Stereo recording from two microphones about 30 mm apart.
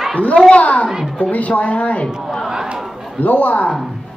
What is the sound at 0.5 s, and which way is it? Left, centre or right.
Speech, left.